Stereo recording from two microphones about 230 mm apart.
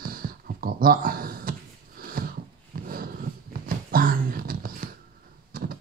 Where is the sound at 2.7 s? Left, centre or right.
Right.